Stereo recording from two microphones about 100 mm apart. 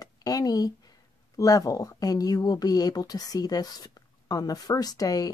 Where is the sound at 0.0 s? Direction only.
40° left (ahead or behind).